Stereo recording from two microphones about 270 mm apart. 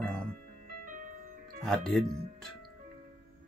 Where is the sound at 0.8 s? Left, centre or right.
Right.